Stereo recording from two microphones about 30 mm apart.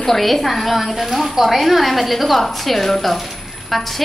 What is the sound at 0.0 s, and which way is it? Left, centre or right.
A woman's voice, centre.